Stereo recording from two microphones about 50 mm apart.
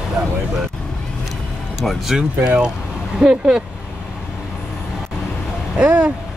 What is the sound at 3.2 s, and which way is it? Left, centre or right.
Speech, centre.